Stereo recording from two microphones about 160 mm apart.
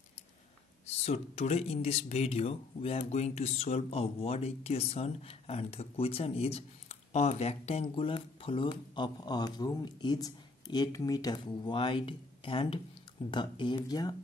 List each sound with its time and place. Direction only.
0.8 s speech: 40° left (ahead or behind); by 14.1 s 25° left (ahead or behind)